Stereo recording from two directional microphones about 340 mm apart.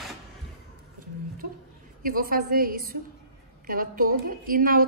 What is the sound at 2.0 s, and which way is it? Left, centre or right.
A woman's voice, right.